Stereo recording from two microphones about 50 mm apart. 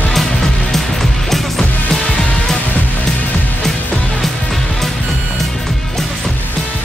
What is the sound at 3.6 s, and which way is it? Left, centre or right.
Music, centre.